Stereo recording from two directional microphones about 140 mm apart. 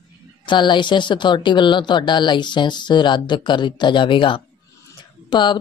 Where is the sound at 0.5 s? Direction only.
35° left (ahead or behind).